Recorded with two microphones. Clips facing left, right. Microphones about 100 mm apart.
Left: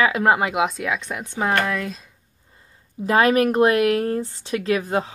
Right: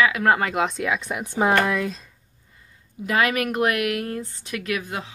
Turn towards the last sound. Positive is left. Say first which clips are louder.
# left 7 dB
turn(degrees=35)  # may be behind; listen again after turning